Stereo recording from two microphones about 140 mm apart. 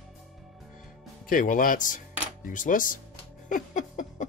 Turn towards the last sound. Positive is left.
turn(degrees=65)  # may be behind; listen again after turning